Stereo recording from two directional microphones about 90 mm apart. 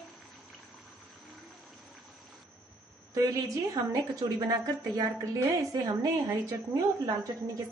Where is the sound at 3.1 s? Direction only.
40° right (ahead or behind).